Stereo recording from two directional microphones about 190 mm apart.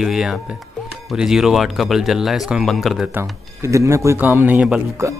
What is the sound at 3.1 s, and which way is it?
Speech, 15° right (ahead or behind).